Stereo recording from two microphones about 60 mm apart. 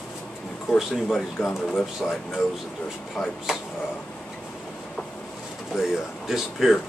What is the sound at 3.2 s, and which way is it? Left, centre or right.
Speech, centre.